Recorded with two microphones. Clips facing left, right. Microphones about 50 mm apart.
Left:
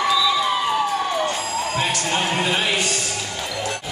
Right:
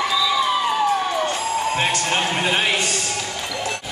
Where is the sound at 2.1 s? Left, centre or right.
Centre.